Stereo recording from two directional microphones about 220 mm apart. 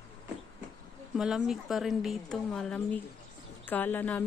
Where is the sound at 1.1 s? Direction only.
Centre (ahead or behind).